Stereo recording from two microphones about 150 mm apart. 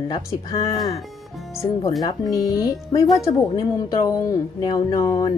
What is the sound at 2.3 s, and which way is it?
Speech, 25° left (ahead or behind).